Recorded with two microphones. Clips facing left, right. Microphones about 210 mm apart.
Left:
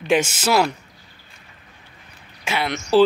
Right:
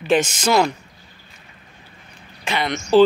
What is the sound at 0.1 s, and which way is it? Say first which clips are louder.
Speech: right 1 dB; 10° left (ahead or behind).